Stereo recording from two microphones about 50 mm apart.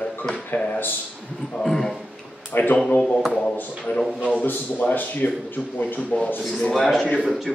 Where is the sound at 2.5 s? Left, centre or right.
Left.